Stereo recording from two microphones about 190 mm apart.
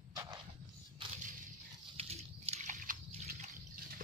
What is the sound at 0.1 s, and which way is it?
Dog, 15° right (ahead or behind).